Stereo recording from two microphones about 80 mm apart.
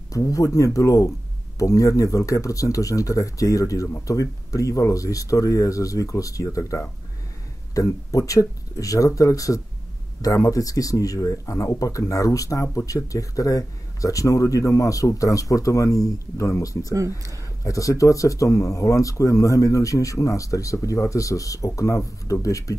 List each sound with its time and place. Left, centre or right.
0.1 s speech: left